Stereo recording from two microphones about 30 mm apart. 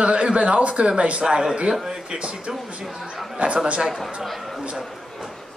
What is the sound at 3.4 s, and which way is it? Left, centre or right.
Speech, right.